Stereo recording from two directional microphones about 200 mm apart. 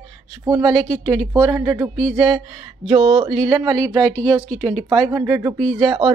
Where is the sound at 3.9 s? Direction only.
5° left (ahead or behind).